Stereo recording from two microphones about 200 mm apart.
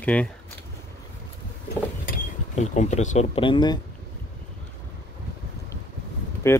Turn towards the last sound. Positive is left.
turn(degrees=10)  # may be behind; listen again after turning